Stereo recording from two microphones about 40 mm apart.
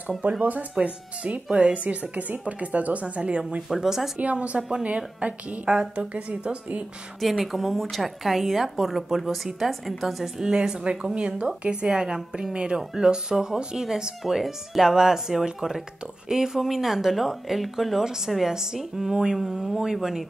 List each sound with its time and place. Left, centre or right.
0.3 s speech: right
3.6 s speech: centre
4.2 s a woman's voice: right
7.2 s a woman's voice: centre